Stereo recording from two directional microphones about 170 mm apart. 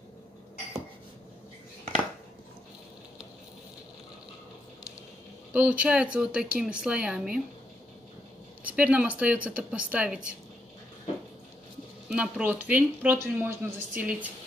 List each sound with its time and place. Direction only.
5.5 s speech: 10° right (ahead or behind)
8.6 s speech: 10° right (ahead or behind)
12.1 s speech: 5° right (ahead or behind)